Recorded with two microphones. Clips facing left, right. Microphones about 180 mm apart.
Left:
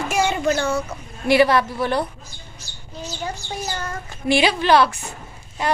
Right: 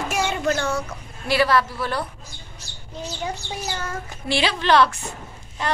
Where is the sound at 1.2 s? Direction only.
20° left (ahead or behind).